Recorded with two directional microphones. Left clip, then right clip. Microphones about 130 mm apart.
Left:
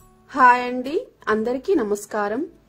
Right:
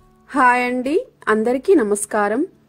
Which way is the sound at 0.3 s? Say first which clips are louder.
Even; 40° right (ahead or behind).